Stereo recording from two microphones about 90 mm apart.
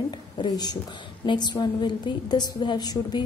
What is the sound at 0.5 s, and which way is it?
A woman's voice, 50° left (ahead or behind).